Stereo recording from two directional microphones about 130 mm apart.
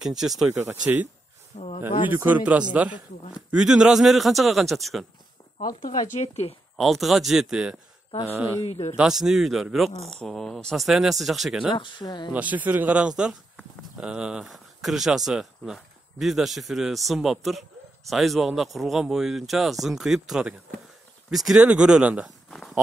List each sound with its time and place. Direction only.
0.0 s speech: 5° right (ahead or behind)
0.7 s speech: 15° right (ahead or behind)
1.5 s speech: 60° left (ahead or behind)
2.0 s speech: 15° right (ahead or behind)
5.8 s speech: 80° left; by 6.5 s 60° left (ahead or behind)
6.8 s speech: centre (ahead or behind)
8.3 s speech: 20° right (ahead or behind)
8.6 s speech: 55° left (ahead or behind)
8.9 s speech: 5° right (ahead or behind)
11.7 s speech: 35° left (ahead or behind)
12.3 s speech: 10° right (ahead or behind)
22.5 s a sound: centre (ahead or behind)